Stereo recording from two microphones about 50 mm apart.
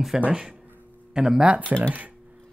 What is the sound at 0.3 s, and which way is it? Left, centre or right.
Speech, centre.